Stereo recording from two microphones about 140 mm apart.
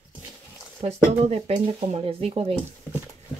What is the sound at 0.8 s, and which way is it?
Speech, 50° right (ahead or behind).